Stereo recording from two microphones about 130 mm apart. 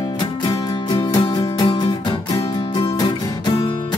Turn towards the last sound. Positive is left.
turn(degrees=30)  # may be behind; listen again after turning